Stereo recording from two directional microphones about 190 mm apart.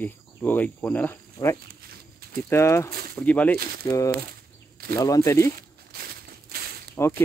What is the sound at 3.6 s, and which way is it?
Speech, 55° right (ahead or behind).